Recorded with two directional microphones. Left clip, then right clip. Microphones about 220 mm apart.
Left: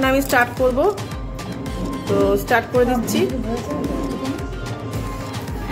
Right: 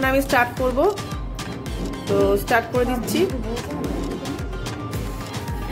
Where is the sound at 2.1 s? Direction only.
5° right (ahead or behind).